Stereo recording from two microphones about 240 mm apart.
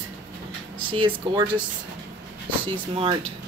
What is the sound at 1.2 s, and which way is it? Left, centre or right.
Speech, centre.